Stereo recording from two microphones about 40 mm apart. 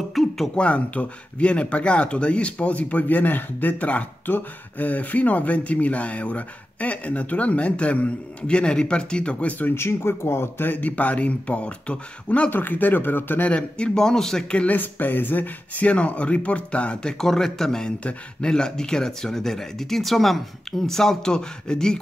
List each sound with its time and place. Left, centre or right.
0.1 s a sound: centre
0.6 s speech: left
9.7 s speech: left
10.8 s speech: left
12.4 s speech: left
13.5 s speech: left
14.7 s speech: left
17.0 s speech: centre
17.8 s speech: left